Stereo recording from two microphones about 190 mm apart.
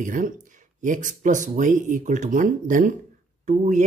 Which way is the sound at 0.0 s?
45° right (ahead or behind).